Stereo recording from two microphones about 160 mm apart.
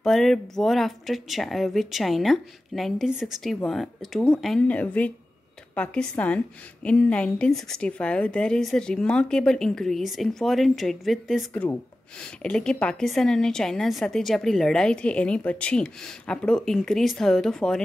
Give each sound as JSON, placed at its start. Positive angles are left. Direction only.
{"t": 0.0, "sound": "a woman's voice", "side_deg": 0}